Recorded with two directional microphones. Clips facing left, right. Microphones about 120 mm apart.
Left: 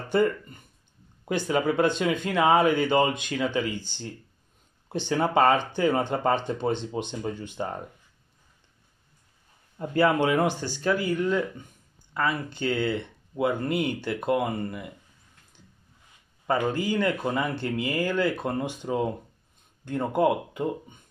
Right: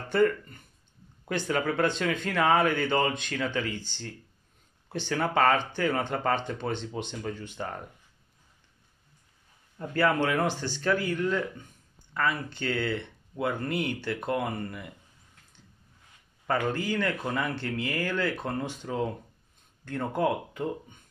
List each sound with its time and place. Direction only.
0.1 s speech: 15° left (ahead or behind)
9.8 s speech: 20° left (ahead or behind)
16.4 s speech: 10° left (ahead or behind)